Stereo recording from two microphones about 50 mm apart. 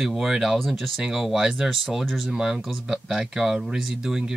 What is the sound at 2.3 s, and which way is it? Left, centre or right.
Speech, centre.